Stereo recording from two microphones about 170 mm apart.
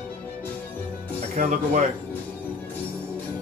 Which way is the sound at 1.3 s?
45° right (ahead or behind).